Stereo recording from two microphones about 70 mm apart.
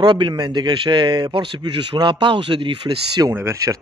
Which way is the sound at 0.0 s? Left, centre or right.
Right.